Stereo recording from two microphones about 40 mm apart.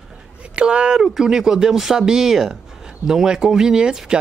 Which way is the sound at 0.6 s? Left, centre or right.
Right.